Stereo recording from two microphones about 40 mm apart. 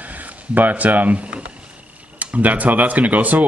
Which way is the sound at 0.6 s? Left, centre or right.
Right.